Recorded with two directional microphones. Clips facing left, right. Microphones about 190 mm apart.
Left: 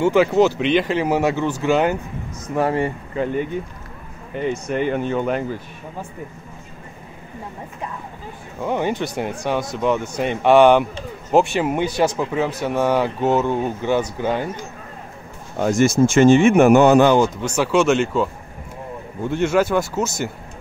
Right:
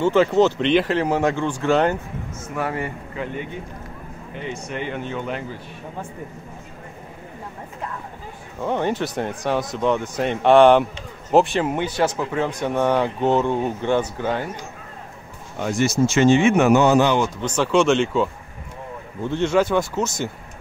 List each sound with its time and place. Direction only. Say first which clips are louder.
0.0 s speech: left 1 dB; 10° left (ahead or behind)
2.5 s speech: left 6 dB; 35° left (ahead or behind)
4.4 s speech: left 8 dB; 45° left (ahead or behind)
8.5 s a man's voice: left 1 dB; 10° left (ahead or behind)
15.5 s speech: left 5 dB; 45° left (ahead or behind)
17.4 s a man's voice: left 1 dB; 10° left (ahead or behind)